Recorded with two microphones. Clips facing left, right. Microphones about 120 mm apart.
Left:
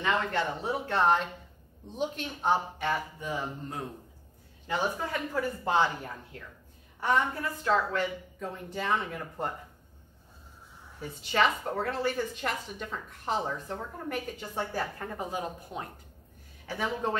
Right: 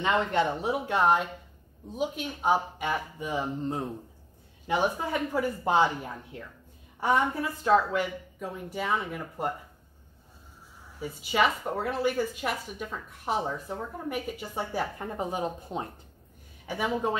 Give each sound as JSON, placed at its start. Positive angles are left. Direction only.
{"t": 0.0, "sound": "speech", "side_deg": -20}
{"t": 3.6, "sound": "a man's voice", "side_deg": -25}
{"t": 7.6, "sound": "speech", "side_deg": -10}
{"t": 11.0, "sound": "speech", "side_deg": -5}
{"t": 16.6, "sound": "speech", "side_deg": -10}